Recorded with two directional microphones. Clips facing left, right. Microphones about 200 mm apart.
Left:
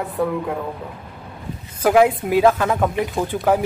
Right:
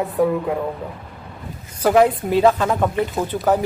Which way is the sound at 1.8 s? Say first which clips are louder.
Even; 5° left (ahead or behind).